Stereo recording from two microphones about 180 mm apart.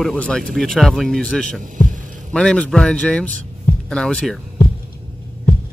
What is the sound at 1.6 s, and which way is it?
Hum, 45° right (ahead or behind).